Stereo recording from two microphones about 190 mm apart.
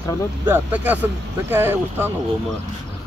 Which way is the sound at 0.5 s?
10° right (ahead or behind).